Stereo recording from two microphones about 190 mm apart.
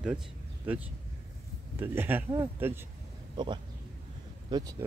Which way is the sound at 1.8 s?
10° right (ahead or behind).